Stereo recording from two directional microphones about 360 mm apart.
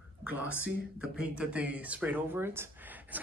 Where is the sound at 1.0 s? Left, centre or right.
Centre.